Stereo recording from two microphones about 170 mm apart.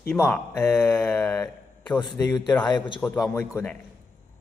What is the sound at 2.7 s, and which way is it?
Speech, 25° left (ahead or behind).